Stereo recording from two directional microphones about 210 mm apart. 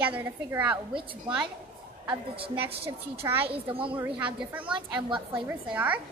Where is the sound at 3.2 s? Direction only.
10° right (ahead or behind).